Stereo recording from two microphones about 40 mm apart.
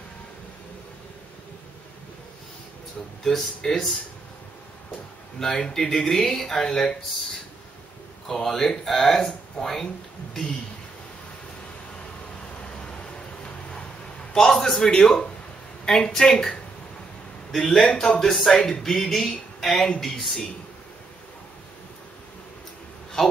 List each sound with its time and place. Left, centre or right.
3.3 s speech: centre
5.4 s speech: centre
6.6 s speech: left
8.3 s speech: centre
12.5 s vehicle: left
14.3 s a man's voice: centre